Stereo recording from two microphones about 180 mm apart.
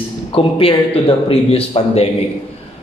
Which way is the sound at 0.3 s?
30° left (ahead or behind).